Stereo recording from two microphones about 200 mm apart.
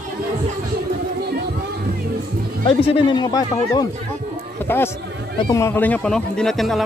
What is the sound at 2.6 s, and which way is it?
Speech, 25° left (ahead or behind).